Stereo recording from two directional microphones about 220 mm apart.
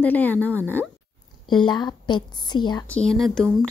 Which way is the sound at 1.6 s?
20° left (ahead or behind).